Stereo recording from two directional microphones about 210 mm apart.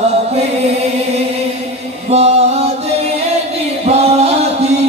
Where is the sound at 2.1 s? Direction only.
30° right (ahead or behind).